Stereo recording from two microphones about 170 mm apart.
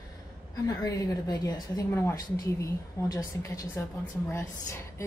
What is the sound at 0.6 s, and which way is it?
Speech, 20° left (ahead or behind).